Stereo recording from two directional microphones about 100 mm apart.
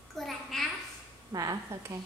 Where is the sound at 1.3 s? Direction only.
35° right (ahead or behind).